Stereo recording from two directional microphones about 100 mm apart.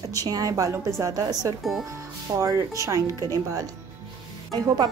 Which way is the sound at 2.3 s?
35° right (ahead or behind).